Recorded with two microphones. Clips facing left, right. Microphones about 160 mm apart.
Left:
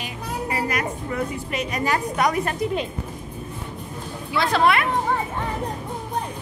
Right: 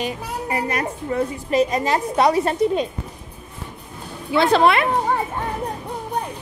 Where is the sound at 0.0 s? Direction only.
30° right (ahead or behind).